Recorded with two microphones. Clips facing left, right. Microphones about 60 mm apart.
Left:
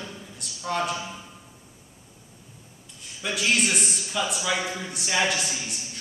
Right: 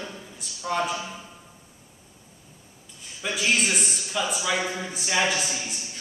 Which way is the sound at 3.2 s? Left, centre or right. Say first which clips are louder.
Even; centre.